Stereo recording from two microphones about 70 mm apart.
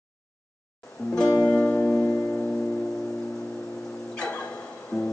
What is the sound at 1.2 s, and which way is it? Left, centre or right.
Music, left.